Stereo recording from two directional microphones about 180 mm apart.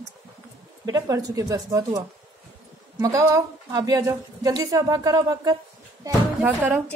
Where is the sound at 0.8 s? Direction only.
20° right (ahead or behind).